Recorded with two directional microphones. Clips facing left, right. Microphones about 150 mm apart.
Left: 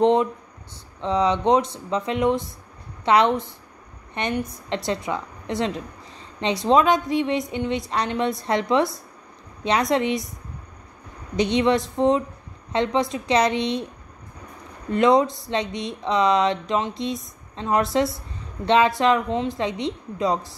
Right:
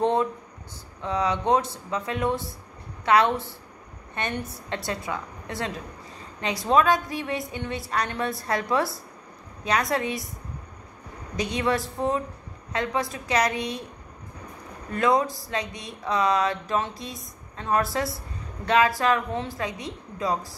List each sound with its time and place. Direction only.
0.0 s a woman's voice: 20° left (ahead or behind)
11.3 s a woman's voice: 25° left (ahead or behind)
14.9 s a woman's voice: 25° left (ahead or behind)